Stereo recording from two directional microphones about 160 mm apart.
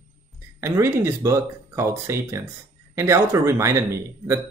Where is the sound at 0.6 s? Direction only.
15° right (ahead or behind).